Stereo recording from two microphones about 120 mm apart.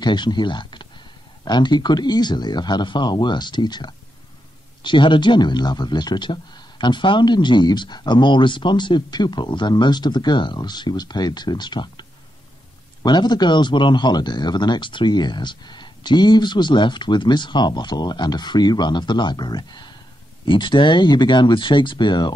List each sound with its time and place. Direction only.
0.0 s speech: 40° left (ahead or behind)